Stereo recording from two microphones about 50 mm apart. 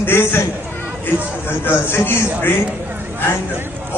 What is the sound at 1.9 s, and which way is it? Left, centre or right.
Speech, left.